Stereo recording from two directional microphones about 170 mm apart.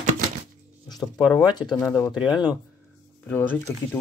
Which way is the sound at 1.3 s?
25° left (ahead or behind).